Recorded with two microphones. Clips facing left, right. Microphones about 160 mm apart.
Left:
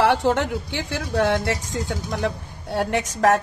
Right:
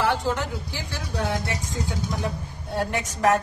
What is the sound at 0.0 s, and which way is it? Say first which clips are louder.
Speech: left 5 dB; 70° left (ahead or behind).